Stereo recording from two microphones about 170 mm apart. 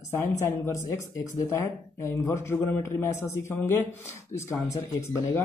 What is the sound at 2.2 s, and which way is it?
Speech, 10° left (ahead or behind).